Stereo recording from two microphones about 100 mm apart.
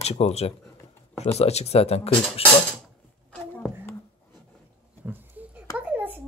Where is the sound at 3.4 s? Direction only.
20° left (ahead or behind).